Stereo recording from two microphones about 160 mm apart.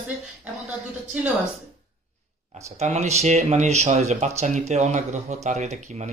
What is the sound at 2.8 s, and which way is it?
Speech, 45° right (ahead or behind).